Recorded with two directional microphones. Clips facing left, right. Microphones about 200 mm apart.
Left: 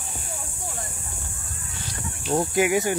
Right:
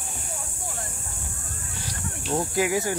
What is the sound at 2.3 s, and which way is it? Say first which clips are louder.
Speech: left 3 dB; 20° left (ahead or behind).